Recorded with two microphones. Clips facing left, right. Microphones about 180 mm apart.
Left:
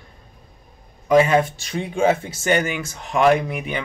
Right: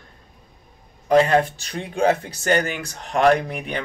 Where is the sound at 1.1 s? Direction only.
5° left (ahead or behind).